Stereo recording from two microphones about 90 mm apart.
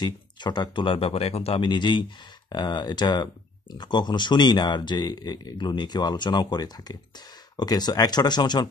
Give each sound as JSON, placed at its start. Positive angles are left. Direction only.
{"t": 0.0, "sound": "speech", "side_deg": 55}